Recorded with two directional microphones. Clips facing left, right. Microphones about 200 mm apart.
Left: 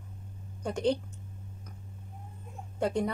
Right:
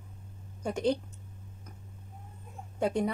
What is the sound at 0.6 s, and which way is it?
Speech, 5° right (ahead or behind).